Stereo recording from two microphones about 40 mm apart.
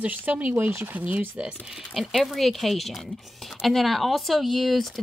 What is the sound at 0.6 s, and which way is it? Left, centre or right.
Speech, right.